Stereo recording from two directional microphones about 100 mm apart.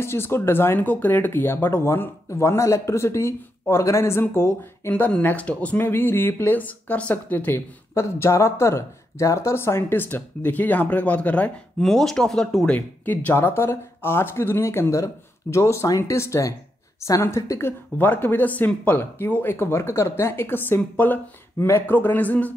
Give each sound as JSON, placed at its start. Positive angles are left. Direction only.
{"t": 0.0, "sound": "speech", "side_deg": 25}